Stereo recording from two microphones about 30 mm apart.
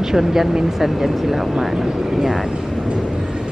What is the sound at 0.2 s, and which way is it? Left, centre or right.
Speech, centre.